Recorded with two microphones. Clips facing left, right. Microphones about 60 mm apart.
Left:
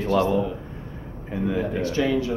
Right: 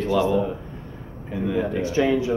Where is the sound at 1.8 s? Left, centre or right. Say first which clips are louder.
Right 3 dB; centre.